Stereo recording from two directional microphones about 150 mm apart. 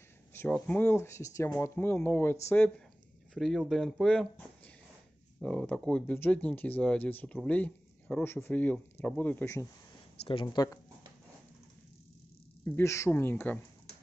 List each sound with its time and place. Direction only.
0.3 s speech: 15° left (ahead or behind)
3.3 s speech: centre (ahead or behind); by 9.7 s 15° left (ahead or behind)
10.2 s speech: 35° left (ahead or behind)
12.6 s speech: 15° left (ahead or behind)